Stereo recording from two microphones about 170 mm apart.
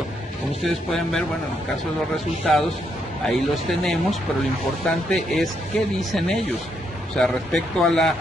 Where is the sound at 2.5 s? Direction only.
5° left (ahead or behind).